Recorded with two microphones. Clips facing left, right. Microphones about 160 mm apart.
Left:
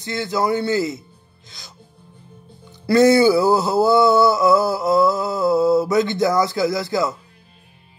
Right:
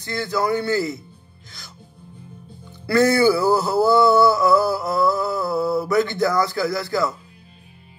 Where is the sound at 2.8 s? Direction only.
20° left (ahead or behind).